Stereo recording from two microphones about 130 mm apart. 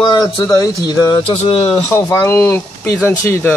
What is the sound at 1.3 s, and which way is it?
Speech, 50° left (ahead or behind).